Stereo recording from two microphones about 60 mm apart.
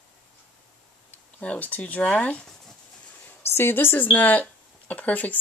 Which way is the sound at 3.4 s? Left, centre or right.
Left.